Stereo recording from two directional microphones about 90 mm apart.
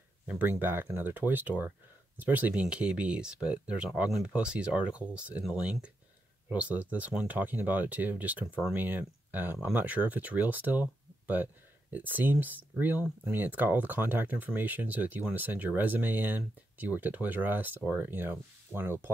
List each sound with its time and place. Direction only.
0.4 s speech: 20° right (ahead or behind)